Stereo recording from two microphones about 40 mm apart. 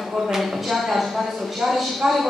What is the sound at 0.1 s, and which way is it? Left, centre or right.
Speech, centre.